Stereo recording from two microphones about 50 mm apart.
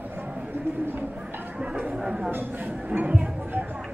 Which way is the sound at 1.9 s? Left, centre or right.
Centre.